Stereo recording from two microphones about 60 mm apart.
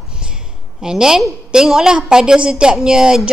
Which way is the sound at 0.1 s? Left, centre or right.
Centre.